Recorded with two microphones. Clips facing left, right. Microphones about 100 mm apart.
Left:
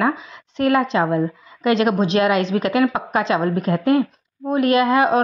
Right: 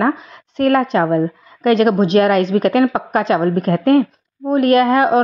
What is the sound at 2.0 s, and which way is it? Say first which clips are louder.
Speech: right 4 dB; 45° right (ahead or behind).